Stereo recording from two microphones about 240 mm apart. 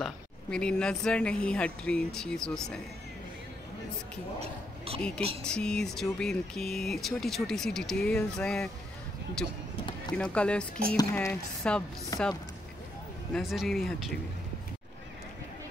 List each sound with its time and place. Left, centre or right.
0.0 s speech: centre
4.4 s speech: right
5.4 s speech: centre
13.3 s speech: centre